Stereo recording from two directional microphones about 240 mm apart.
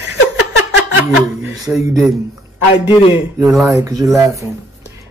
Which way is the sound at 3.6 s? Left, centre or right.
Centre.